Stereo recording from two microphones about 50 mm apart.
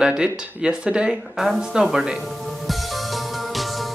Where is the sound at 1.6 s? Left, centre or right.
Centre.